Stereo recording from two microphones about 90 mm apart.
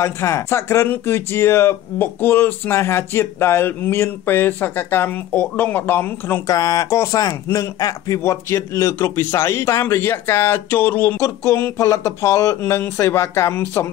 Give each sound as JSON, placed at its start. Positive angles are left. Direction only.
{"t": 0.0, "sound": "speech", "side_deg": 30}
{"t": 6.4, "sound": "speech", "side_deg": 45}
{"t": 11.1, "sound": "speech", "side_deg": 30}